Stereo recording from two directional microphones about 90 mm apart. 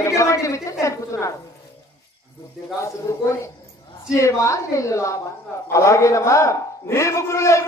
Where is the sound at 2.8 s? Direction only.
35° left (ahead or behind).